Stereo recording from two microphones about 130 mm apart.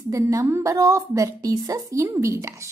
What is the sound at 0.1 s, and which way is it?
A woman's voice, 25° right (ahead or behind).